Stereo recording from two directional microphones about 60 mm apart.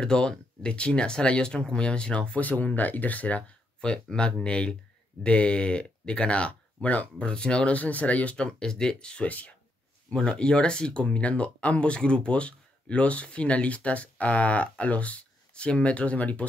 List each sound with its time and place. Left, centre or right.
0.0 s speech: centre
8.5 s speech: centre